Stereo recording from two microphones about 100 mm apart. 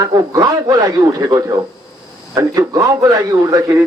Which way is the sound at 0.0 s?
40° right (ahead or behind).